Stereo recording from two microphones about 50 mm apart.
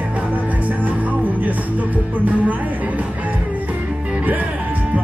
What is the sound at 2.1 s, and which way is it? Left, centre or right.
Music, right.